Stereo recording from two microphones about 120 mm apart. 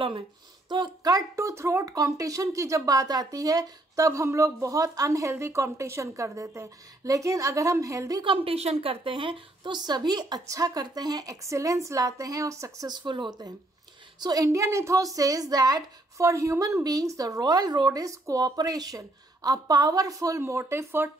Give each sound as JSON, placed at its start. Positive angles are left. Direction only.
{"t": 0.7, "sound": "speech", "side_deg": -40}
{"t": 8.5, "sound": "speech", "side_deg": -55}